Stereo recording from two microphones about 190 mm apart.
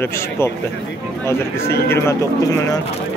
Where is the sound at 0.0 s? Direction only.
15° left (ahead or behind).